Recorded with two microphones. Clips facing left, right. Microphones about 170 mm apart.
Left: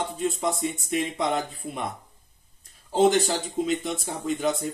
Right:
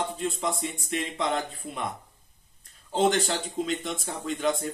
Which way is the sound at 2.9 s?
5° left (ahead or behind).